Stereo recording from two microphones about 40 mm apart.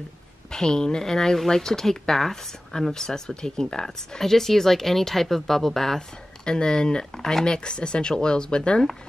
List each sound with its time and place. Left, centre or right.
0.5 s a woman's voice: centre
6.4 s speech: centre